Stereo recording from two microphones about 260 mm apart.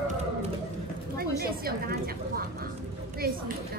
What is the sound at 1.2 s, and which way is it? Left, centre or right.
A woman's voice, right.